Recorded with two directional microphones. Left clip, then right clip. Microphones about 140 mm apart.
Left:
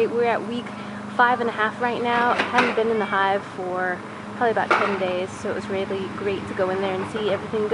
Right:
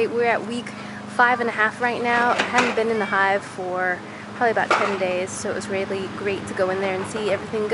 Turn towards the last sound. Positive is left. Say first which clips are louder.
# right 1 dB
turn(degrees=-25)  # may be behind; listen again after turning